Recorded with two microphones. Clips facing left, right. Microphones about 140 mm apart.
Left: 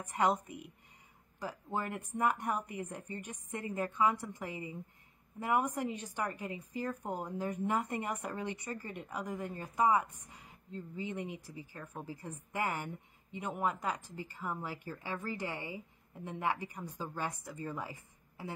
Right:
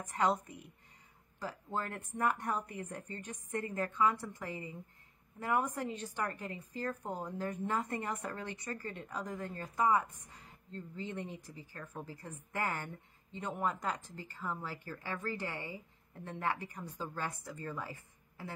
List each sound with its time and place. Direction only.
0.0 s a woman's voice: 15° left (ahead or behind)